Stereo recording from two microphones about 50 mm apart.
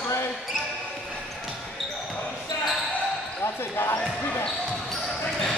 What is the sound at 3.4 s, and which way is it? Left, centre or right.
Speech, left.